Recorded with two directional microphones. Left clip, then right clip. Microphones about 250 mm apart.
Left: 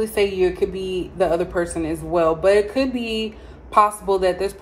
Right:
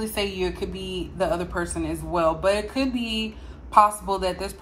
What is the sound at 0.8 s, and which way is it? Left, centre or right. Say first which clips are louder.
A woman's voice: left 2 dB; centre.